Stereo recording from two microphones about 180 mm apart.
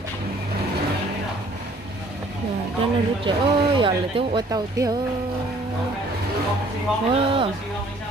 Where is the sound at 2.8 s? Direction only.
25° right (ahead or behind).